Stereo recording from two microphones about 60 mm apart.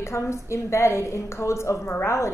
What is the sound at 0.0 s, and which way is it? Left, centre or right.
Speech, left.